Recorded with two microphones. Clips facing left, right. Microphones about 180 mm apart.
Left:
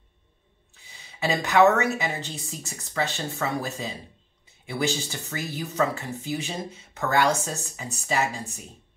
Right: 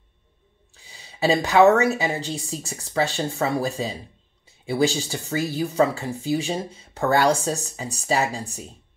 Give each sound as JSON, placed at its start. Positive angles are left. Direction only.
{"t": 1.2, "sound": "speech", "side_deg": -30}